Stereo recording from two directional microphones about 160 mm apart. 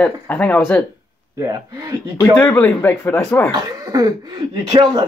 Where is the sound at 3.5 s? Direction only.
25° right (ahead or behind).